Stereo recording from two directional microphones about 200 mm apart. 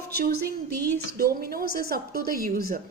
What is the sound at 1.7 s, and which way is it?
A woman's voice, 50° right (ahead or behind).